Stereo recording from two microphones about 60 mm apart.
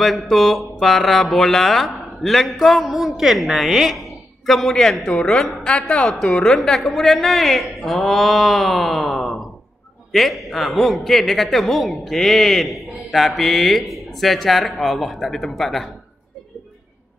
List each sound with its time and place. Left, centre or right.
0.0 s a woman's voice: centre